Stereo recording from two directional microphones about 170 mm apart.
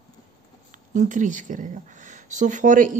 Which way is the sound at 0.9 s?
50° right (ahead or behind).